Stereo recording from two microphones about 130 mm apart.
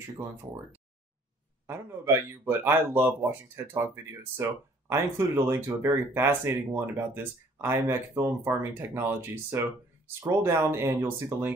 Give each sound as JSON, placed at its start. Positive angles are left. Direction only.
{"t": 1.7, "sound": "speech", "side_deg": -15}